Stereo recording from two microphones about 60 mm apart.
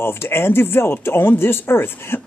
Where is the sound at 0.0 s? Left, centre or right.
Left.